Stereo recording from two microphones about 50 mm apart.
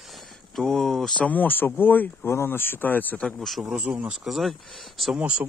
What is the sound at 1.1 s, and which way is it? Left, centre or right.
Speech, left.